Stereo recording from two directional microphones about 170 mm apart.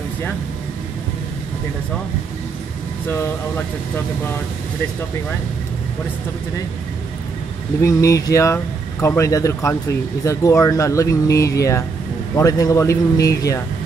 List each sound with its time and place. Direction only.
3.1 s speech: 15° left (ahead or behind)
7.8 s speech: 20° left (ahead or behind)